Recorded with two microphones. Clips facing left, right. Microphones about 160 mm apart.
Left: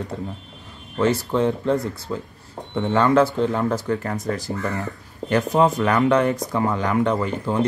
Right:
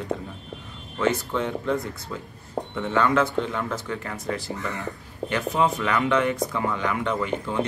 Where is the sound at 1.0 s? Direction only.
35° left (ahead or behind).